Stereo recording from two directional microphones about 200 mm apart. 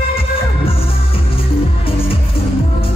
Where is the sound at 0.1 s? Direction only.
30° left (ahead or behind).